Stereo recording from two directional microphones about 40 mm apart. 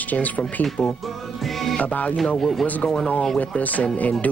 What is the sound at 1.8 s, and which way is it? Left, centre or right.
Speech, left.